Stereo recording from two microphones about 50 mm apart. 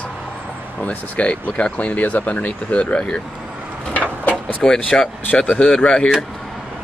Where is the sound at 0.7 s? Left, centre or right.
Left.